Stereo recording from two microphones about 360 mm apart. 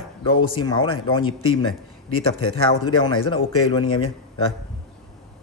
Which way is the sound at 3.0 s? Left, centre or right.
Centre.